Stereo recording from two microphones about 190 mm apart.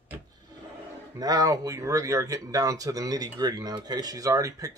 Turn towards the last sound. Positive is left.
turn(degrees=-20)  # may be behind; listen again after turning